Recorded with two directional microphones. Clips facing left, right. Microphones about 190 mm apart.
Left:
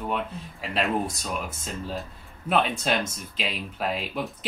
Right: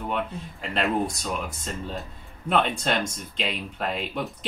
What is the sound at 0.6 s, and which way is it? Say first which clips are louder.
Speech: right 1 dB; centre (ahead or behind).